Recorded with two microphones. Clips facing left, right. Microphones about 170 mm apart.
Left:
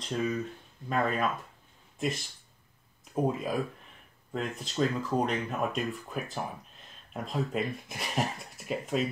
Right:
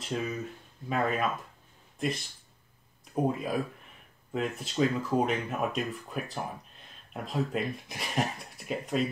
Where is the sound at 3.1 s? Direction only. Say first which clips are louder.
Even; centre (ahead or behind).